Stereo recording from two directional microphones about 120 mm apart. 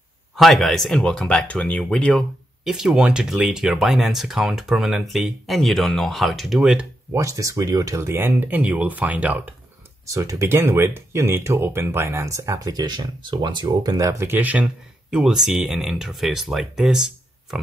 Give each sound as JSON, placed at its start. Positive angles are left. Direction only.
{"t": 0.4, "sound": "speech", "side_deg": 0}
{"t": 2.6, "sound": "speech", "side_deg": -5}
{"t": 7.1, "sound": "speech", "side_deg": -25}
{"t": 10.0, "sound": "speech", "side_deg": -25}